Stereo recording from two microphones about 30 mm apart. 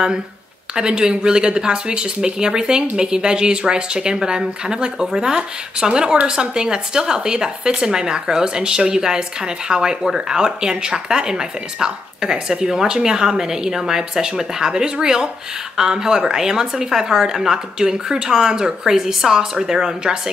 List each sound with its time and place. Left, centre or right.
0.7 s a woman's voice: right
5.3 s a woman's voice: right